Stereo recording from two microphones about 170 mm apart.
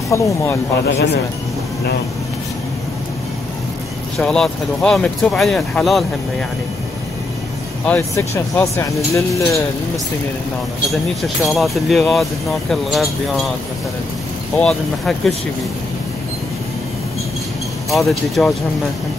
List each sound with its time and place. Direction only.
0.1 s speech: 15° left (ahead or behind)
0.8 s a man's voice: 85° left
4.2 s speech: 5° left (ahead or behind)
7.8 s speech: 10° left (ahead or behind)
10.9 s speech: centre (ahead or behind)
14.6 s speech: 5° left (ahead or behind)
17.8 s speech: centre (ahead or behind)